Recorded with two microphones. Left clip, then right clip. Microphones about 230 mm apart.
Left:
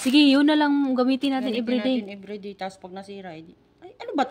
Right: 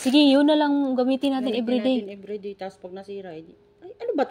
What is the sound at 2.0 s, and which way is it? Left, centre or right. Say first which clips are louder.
A woman's voice: right 3 dB; left.